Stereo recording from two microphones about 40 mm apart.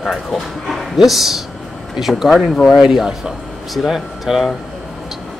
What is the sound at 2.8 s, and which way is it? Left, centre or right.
Speech, centre.